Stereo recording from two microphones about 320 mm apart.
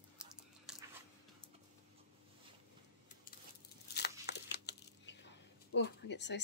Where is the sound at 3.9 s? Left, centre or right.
Left.